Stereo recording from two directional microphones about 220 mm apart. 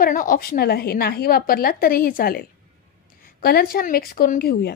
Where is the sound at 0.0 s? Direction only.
40° left (ahead or behind).